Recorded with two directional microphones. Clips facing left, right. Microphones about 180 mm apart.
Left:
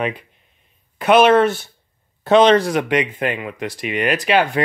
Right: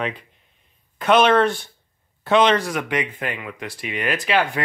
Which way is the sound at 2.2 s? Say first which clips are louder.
Left 5 dB; 35° left (ahead or behind).